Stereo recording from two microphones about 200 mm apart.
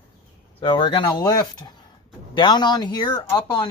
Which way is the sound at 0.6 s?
20° left (ahead or behind).